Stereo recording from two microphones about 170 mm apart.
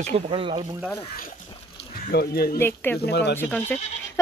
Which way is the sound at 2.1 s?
65° left (ahead or behind).